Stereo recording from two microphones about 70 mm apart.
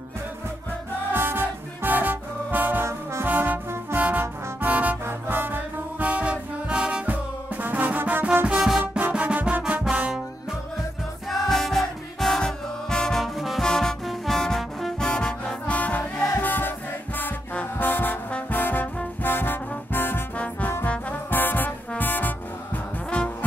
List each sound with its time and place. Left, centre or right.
1.1 s music: right
3.3 s brass instrument: right
5.0 s music: right
8.5 s music: centre
11.2 s music: centre
13.7 s brass instrument: centre; by 16.7 s left
17.2 s trombone: left
19.2 s brass instrument: left
20.8 s music: left
23.0 s brass instrument: centre